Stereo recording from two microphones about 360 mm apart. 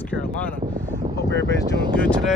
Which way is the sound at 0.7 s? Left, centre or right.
Right.